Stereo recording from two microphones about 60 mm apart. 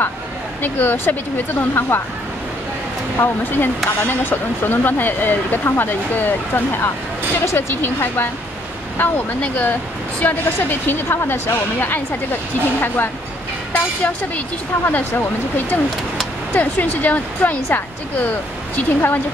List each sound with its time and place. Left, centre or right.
0.6 s speech: left
3.5 s speech: left
13.7 s speech: left